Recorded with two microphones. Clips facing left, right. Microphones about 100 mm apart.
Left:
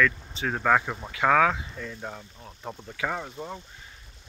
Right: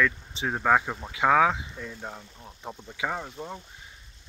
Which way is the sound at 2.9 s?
10° right (ahead or behind).